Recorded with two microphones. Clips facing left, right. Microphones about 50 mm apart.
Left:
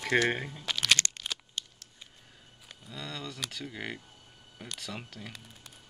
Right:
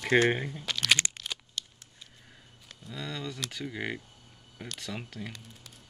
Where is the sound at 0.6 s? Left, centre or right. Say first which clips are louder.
Right 1 dB; centre.